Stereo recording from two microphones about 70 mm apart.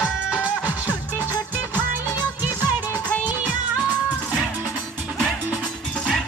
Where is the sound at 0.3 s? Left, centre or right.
Centre.